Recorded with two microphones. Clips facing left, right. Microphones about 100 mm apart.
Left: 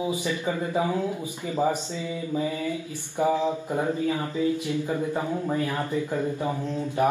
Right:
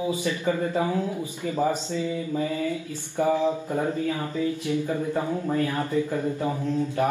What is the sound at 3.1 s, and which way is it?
Speech, 15° left (ahead or behind).